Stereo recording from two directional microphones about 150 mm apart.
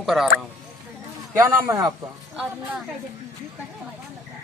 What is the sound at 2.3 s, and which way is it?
Speech, 5° right (ahead or behind).